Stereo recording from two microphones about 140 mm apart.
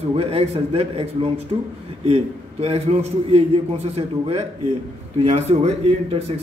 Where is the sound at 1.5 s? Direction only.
35° right (ahead or behind).